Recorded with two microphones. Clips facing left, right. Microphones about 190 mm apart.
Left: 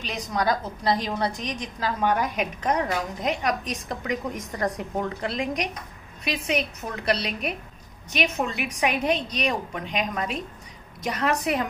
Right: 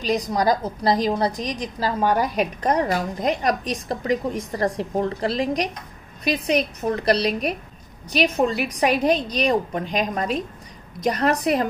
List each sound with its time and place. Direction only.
0.0 s a woman's voice: 35° right (ahead or behind)